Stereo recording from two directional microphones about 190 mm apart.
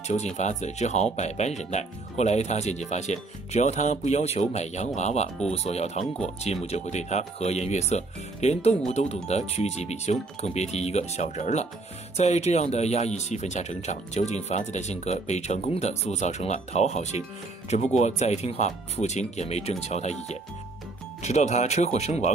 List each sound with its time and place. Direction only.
0.1 s speech: 35° left (ahead or behind)